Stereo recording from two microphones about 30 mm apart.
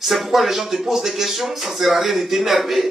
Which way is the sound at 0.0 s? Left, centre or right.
Centre.